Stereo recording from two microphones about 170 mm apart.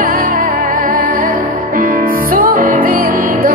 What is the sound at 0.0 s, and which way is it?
Music, 55° right (ahead or behind).